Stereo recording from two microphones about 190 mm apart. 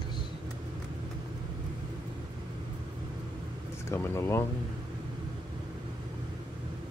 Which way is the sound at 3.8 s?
15° left (ahead or behind).